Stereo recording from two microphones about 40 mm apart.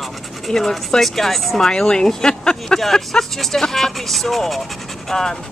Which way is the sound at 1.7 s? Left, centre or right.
Left.